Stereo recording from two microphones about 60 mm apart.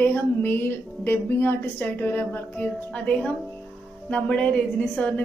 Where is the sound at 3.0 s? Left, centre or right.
Centre.